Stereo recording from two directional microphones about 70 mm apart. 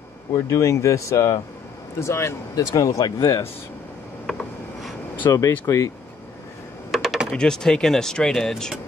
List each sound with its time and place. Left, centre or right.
0.3 s speech: left
2.5 s speech: left
4.3 s a sound: centre
5.3 s speech: left
6.9 s typing: centre
7.3 s speech: centre